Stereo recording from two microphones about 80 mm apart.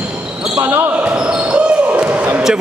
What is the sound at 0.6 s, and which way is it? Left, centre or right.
Speech, right.